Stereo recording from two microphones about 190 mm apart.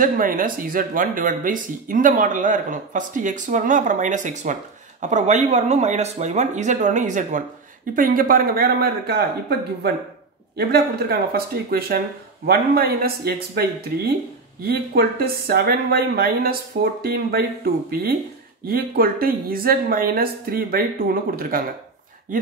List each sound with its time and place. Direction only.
0.0 s speech: 45° right (ahead or behind)
10.7 s speech: 55° right (ahead or behind)
18.7 s speech: 50° right (ahead or behind)